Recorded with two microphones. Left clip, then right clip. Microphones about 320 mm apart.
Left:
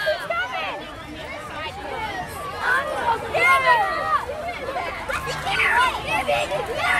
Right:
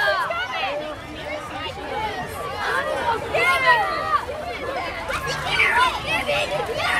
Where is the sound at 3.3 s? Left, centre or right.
Left.